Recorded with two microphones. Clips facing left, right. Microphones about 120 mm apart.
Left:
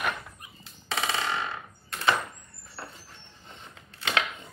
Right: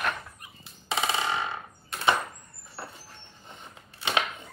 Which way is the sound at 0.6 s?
15° right (ahead or behind).